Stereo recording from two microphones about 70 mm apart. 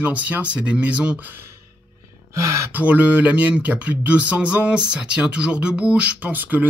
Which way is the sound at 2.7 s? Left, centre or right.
Right.